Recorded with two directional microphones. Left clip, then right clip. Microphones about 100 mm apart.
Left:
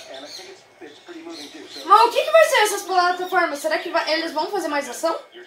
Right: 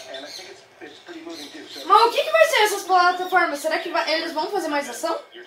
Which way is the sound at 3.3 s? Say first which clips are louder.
Even; 60° left (ahead or behind).